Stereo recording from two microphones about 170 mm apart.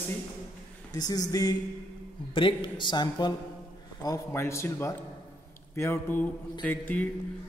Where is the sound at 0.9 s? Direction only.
20° left (ahead or behind).